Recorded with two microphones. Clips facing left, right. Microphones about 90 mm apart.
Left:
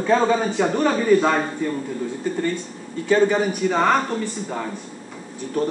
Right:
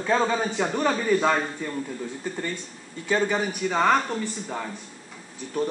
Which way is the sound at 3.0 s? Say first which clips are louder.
Left 6 dB; centre (ahead or behind).